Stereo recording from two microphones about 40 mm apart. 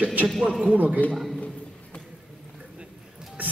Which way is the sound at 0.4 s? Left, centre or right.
Centre.